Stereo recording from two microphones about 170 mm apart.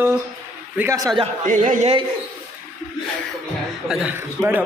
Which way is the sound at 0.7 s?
15° right (ahead or behind).